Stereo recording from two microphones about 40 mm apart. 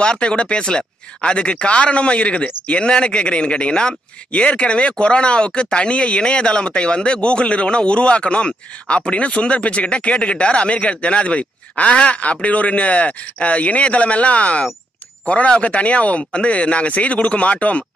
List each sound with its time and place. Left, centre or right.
0.0 s speech: left
4.3 s speech: left